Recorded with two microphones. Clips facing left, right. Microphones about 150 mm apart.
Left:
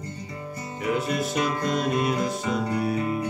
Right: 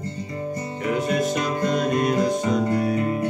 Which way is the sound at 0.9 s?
Centre (ahead or behind).